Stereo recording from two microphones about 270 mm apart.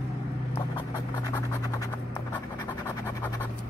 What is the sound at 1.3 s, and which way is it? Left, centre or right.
Scratch, centre.